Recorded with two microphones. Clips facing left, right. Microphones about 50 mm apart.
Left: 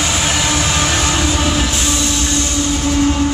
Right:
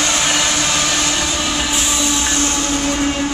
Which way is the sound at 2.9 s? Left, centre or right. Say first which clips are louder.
Left 4 dB; centre.